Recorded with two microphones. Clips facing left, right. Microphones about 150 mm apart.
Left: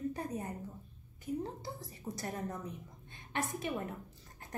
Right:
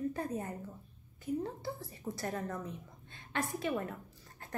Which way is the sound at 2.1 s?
20° left (ahead or behind).